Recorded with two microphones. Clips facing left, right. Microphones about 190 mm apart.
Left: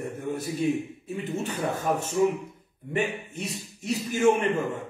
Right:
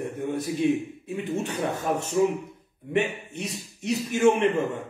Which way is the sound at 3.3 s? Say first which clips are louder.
Right 1 dB; centre (ahead or behind).